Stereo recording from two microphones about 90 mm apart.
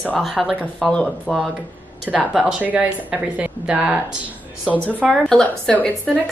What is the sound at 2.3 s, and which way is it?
A woman's voice, 15° right (ahead or behind).